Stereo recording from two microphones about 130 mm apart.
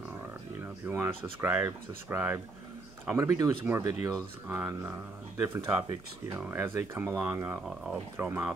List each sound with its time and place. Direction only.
0.8 s speech: 20° right (ahead or behind)